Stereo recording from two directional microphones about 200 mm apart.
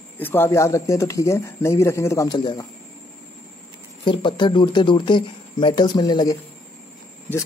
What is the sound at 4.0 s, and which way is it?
Speech, 25° left (ahead or behind).